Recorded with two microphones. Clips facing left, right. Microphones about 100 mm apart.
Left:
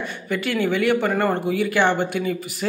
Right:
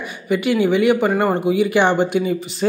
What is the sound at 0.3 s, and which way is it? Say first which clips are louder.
Speech: right 6 dB; 15° right (ahead or behind).